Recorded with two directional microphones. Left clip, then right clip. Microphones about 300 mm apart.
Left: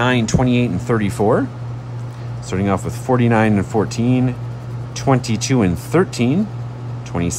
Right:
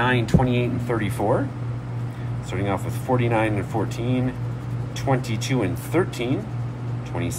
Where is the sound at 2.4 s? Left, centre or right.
Left.